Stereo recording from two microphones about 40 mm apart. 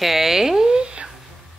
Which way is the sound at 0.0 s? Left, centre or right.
Centre.